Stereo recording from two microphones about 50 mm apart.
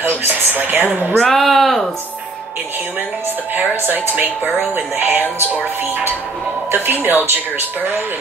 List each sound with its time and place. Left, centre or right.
0.0 s speech: right
0.8 s speech: right
1.2 s speech: centre
3.5 s a woman's voice: right